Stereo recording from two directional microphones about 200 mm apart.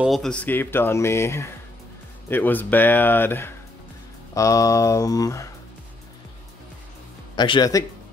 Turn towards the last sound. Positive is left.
turn(degrees=20)  # may be behind; listen again after turning